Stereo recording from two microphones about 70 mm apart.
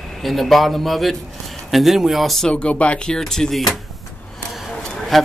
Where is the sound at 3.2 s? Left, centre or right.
Centre.